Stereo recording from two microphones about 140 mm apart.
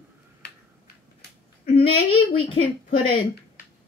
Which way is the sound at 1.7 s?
40° left (ahead or behind).